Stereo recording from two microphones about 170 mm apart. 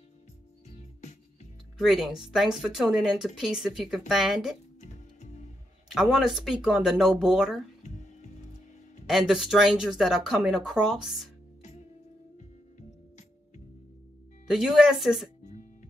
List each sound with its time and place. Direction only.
0.7 s music: 40° left (ahead or behind)
1.8 s speech: centre (ahead or behind)
4.7 s music: 45° left (ahead or behind)
5.9 s speech: centre (ahead or behind)
7.8 s music: 45° left (ahead or behind)
9.0 s speech: 5° right (ahead or behind)
14.5 s speech: centre (ahead or behind)